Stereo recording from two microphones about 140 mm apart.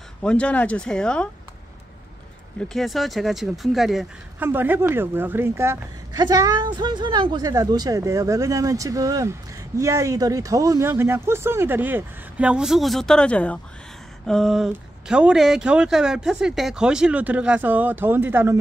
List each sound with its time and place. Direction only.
0.2 s speech: 10° left (ahead or behind)
2.7 s speech: centre (ahead or behind)
4.4 s a woman's voice: 15° right (ahead or behind)